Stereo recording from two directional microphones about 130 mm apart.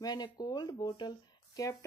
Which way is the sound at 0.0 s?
30° left (ahead or behind).